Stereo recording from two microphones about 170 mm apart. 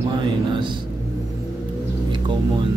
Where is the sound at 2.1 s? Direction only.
30° right (ahead or behind).